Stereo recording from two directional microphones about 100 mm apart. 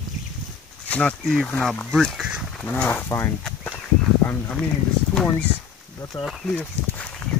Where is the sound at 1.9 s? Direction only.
Centre (ahead or behind).